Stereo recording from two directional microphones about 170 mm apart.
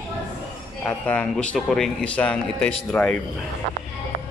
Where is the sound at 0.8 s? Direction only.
10° left (ahead or behind).